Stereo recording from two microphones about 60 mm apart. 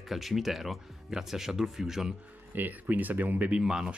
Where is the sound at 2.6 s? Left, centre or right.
Right.